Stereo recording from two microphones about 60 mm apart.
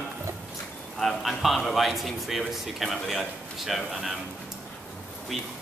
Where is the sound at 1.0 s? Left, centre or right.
Centre.